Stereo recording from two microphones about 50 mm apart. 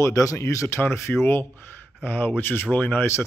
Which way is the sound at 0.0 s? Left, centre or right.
Left.